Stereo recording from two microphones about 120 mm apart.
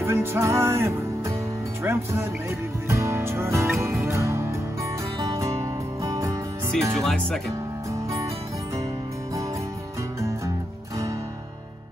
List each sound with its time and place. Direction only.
0.0 s music: 20° right (ahead or behind)
6.7 s speech: 5° left (ahead or behind)